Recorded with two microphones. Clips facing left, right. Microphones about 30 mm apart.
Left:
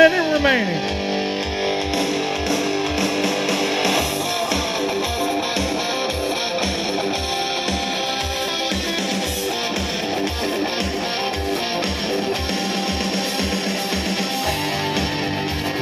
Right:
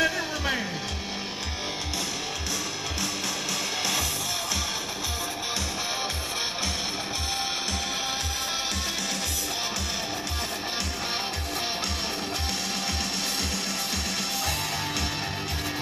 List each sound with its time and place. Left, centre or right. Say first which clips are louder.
0.0 s music: left 12 dB; left